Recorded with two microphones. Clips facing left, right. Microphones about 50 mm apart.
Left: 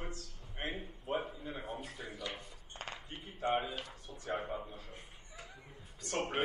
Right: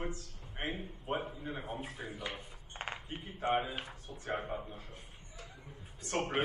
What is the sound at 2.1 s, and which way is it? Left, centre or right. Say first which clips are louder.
Mechanisms: right 1 dB; right.